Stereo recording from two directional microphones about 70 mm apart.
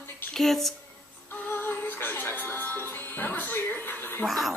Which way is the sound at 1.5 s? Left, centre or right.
Left.